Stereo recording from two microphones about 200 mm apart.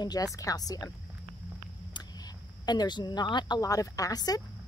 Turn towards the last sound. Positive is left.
turn(degrees=20)  # may be behind; listen again after turning